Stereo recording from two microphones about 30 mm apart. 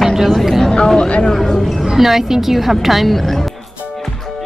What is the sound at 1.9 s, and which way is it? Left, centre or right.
A woman's voice, centre.